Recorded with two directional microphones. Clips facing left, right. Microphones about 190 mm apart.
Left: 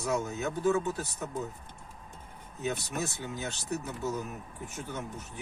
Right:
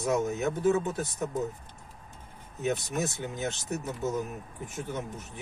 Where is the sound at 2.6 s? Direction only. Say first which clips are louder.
Right 4 dB; 20° right (ahead or behind).